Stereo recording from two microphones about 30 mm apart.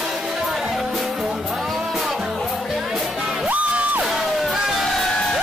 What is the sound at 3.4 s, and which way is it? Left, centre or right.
Music, right.